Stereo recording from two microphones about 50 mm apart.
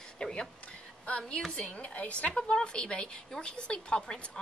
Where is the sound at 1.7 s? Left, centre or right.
Left.